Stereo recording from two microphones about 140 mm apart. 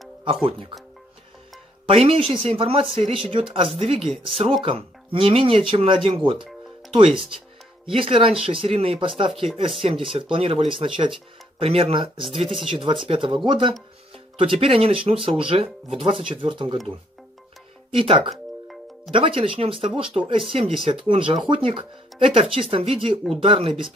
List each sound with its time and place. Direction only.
0.2 s speech: 40° right (ahead or behind)
1.9 s speech: 40° right (ahead or behind)
7.9 s speech: 40° right (ahead or behind)
17.9 s speech: 40° right (ahead or behind)
18.3 s music: centre (ahead or behind)
19.1 s speech: 40° right (ahead or behind)